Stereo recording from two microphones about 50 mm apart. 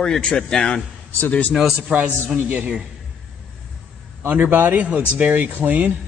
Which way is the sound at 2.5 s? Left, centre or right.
Right.